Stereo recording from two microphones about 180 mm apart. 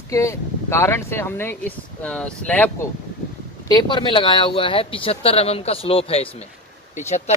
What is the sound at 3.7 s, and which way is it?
Speech, 25° left (ahead or behind).